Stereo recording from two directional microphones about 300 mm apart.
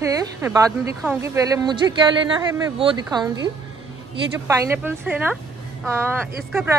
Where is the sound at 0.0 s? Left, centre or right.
Centre.